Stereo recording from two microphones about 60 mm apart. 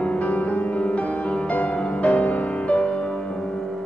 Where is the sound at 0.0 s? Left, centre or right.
Left.